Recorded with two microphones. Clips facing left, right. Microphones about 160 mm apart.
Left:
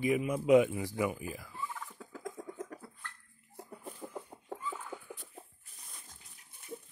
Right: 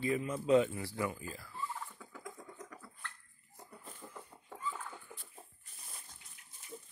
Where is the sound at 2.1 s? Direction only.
50° left (ahead or behind).